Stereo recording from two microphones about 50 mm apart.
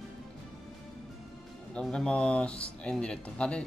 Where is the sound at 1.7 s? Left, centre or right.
Centre.